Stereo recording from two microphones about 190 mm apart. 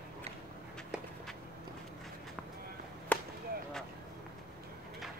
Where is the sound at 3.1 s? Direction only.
5° left (ahead or behind).